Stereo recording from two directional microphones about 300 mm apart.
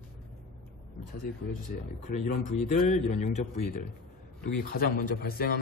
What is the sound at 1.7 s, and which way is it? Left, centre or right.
Speech, left.